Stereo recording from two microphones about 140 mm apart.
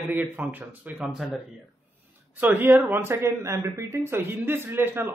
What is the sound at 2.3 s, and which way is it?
Speech, 15° right (ahead or behind).